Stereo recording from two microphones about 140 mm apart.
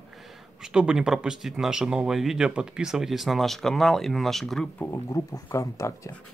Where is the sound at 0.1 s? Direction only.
Centre (ahead or behind).